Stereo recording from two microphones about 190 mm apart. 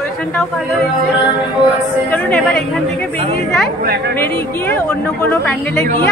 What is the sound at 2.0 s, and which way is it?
Speech, 5° left (ahead or behind).